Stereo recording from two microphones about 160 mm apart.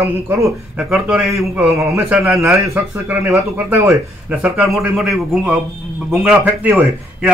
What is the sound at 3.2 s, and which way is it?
Speech, 5° right (ahead or behind).